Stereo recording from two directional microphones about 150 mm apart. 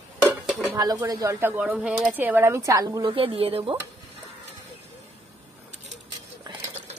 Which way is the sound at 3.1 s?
40° right (ahead or behind).